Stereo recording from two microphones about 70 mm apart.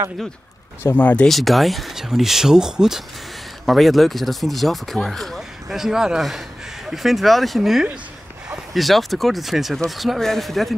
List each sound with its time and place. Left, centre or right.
0.9 s speech: left
1.2 s speech: centre